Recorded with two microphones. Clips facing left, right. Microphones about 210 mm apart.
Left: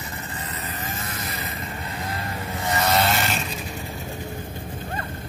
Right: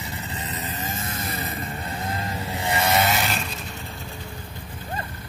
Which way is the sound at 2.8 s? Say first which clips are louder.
Left 1 dB; centre (ahead or behind).